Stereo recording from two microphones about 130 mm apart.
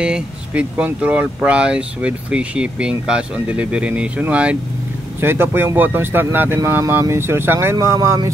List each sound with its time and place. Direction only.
0.0 s speech: 10° right (ahead or behind)